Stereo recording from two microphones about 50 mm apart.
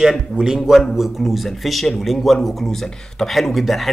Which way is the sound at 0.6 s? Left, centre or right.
Centre.